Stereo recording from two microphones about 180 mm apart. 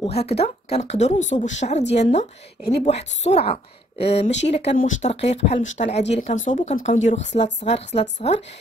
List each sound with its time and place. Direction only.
0.0 s speech: 35° left (ahead or behind)